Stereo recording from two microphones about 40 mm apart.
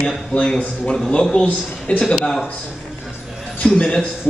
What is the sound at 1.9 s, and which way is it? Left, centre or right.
Speech, left.